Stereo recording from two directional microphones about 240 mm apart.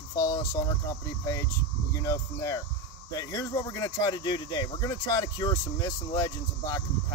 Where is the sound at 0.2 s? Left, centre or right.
Centre.